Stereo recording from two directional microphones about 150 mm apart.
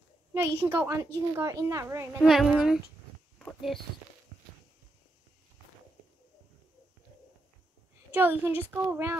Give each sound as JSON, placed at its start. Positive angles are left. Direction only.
{"t": 0.6, "sound": "a child's voice", "side_deg": -20}
{"t": 2.1, "sound": "a child's voice", "side_deg": 0}
{"t": 8.1, "sound": "a woman's voice", "side_deg": -15}